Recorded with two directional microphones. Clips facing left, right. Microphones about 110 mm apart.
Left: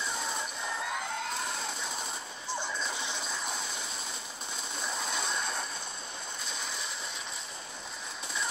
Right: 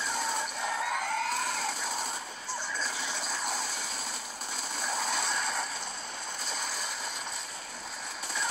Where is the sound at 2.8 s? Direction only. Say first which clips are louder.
Even; 20° left (ahead or behind).